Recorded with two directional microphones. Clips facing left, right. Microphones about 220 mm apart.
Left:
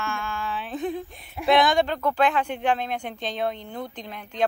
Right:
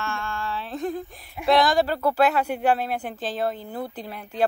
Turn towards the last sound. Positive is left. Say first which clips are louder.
# right 2 dB
turn(degrees=-5)  # may be behind; listen again after turning